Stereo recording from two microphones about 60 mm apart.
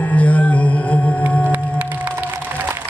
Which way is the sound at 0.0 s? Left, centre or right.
Left.